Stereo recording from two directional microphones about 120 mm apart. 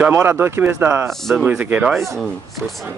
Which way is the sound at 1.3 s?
10° right (ahead or behind).